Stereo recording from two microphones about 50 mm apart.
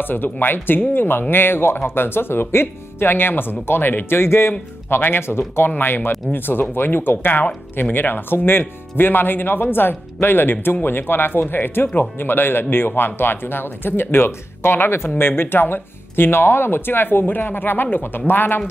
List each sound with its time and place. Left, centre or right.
0.0 s speech: left